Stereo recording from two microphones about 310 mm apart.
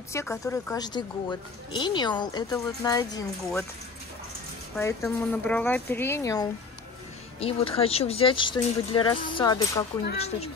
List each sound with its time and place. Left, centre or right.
0.1 s speech: centre
4.7 s speech: centre